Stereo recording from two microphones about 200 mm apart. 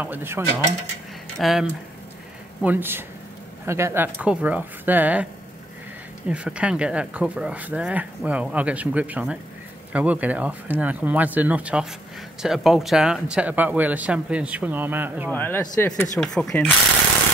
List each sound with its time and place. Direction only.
0.0 s speech: 10° right (ahead or behind)
1.4 s speech: centre (ahead or behind)
15.3 s speech: 10° left (ahead or behind)